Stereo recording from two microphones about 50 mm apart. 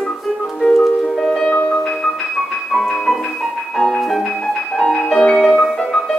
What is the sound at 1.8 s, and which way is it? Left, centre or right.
Music, centre.